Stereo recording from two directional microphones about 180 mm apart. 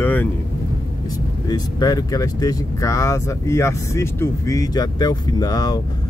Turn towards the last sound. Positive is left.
turn(degrees=20)  # may be behind; listen again after turning